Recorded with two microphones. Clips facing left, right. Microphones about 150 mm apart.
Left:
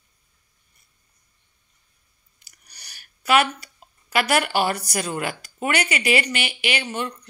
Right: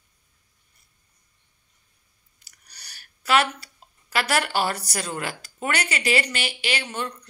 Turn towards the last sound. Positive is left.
turn(degrees=15)  # may be behind; listen again after turning